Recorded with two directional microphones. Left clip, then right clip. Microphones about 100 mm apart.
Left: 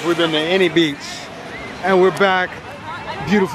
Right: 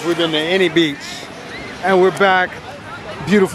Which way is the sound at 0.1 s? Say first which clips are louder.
Even; 20° right (ahead or behind).